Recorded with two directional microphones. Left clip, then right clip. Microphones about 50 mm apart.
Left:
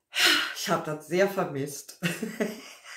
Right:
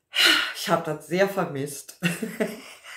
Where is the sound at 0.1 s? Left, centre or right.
Right.